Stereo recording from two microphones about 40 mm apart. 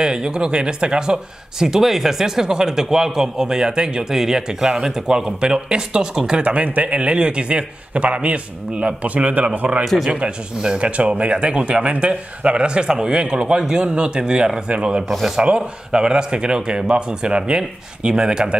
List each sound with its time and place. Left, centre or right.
0.0 s speech: centre
4.0 s speech: centre
6.4 s a man's voice: right
10.1 s speech: right